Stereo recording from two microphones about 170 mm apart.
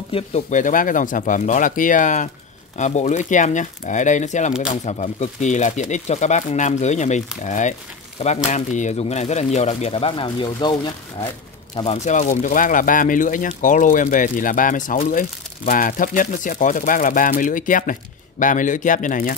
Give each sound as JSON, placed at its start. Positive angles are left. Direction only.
{"t": 0.1, "sound": "speech", "side_deg": 45}
{"t": 11.7, "sound": "speech", "side_deg": 35}